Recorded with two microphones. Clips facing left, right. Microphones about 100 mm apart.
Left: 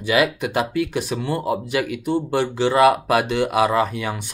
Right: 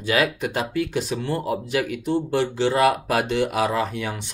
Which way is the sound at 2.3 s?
65° left (ahead or behind).